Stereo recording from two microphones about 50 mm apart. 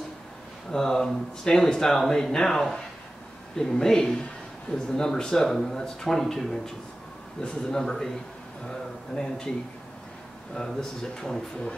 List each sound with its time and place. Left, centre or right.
0.7 s speech: centre
10.8 s speech: centre